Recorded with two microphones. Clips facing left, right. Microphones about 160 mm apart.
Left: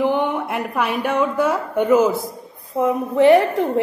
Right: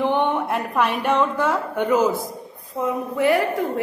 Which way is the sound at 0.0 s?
5° left (ahead or behind).